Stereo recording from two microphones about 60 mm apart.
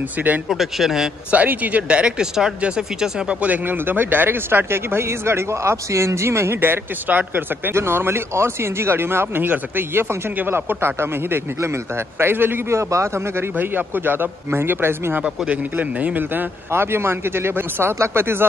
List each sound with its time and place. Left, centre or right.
0.5 s speech: centre
1.3 s speech: right
7.7 s speech: right
12.7 s a man's voice: right
13.6 s speech: right
15.2 s speech: centre; by 18.4 s right